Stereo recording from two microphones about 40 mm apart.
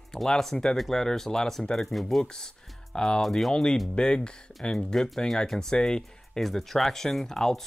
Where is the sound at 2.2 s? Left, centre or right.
Centre.